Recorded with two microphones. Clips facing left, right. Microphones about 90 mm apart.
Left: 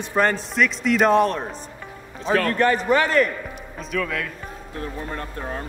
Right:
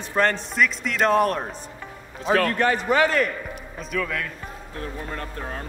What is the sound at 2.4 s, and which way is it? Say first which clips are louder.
Speech: left 2 dB; 40° left (ahead or behind).